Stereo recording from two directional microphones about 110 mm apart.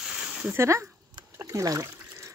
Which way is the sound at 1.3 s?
30° right (ahead or behind).